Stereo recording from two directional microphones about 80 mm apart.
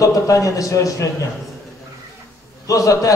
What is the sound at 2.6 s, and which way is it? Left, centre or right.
Speech, left.